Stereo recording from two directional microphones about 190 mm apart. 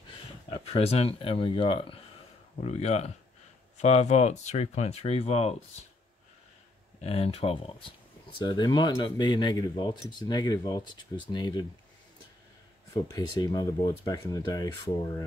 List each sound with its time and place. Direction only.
0.5 s speech: 30° left (ahead or behind)
7.0 s speech: 30° left (ahead or behind)
12.9 s speech: 20° left (ahead or behind)